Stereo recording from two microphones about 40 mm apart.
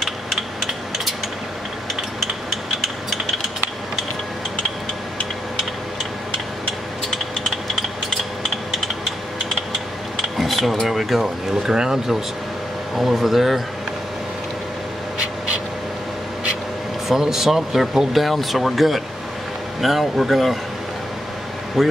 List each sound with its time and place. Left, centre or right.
0.6 s a sound: centre
10.1 s a sound: centre
11.2 s speech: centre
12.9 s speech: centre
17.1 s speech: centre
21.8 s speech: centre